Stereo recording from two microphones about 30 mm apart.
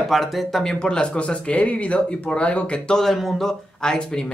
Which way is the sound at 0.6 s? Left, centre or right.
Left.